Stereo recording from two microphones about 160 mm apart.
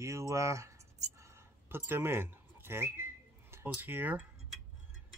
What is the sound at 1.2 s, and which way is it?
Whistling, 15° right (ahead or behind).